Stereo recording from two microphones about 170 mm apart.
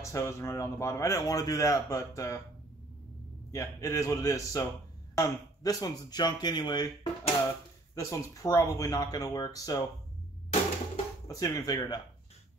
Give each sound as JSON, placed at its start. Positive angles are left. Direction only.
{"t": 0.0, "sound": "speech", "side_deg": 20}
{"t": 3.5, "sound": "speech", "side_deg": 20}
{"t": 11.2, "sound": "speech", "side_deg": 20}